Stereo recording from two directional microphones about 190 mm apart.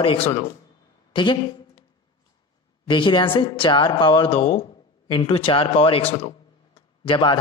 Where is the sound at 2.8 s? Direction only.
25° left (ahead or behind).